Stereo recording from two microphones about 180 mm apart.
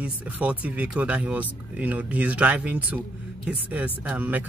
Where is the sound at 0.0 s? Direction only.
5° right (ahead or behind).